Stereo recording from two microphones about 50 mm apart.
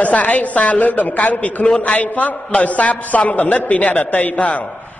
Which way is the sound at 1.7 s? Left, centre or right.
Left.